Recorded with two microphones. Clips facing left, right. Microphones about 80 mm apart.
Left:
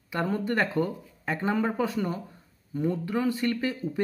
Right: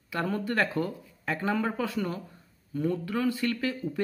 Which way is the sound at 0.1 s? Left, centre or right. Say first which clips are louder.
Left 2 dB; left.